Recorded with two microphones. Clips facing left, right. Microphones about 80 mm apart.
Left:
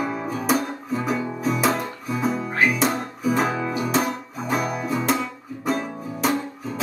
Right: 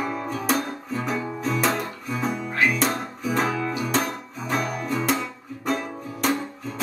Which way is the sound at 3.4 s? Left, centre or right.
Left.